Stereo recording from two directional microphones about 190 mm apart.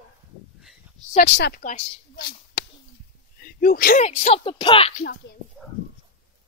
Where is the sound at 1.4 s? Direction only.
50° left (ahead or behind).